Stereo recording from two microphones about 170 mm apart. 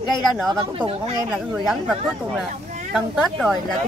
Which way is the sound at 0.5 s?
25° right (ahead or behind).